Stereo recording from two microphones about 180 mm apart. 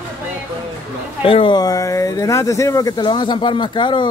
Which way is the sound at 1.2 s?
30° left (ahead or behind).